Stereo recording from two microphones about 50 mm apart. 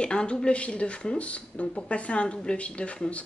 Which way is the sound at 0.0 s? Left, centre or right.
Centre.